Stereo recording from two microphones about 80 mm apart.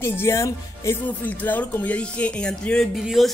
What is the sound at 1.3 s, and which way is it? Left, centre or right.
Music, left.